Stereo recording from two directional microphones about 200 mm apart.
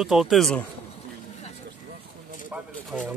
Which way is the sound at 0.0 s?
Centre (ahead or behind).